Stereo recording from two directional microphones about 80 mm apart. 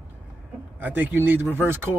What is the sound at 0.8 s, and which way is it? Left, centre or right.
Speech, right.